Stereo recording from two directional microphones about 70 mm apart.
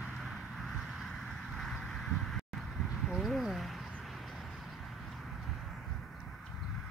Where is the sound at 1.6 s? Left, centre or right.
Centre.